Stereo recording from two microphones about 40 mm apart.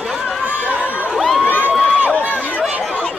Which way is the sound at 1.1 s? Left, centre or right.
Centre.